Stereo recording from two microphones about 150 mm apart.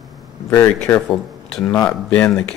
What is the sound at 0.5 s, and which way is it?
Speech, 15° left (ahead or behind).